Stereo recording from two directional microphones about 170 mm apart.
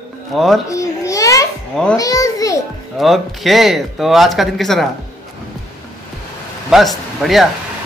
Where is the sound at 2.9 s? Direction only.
Centre (ahead or behind).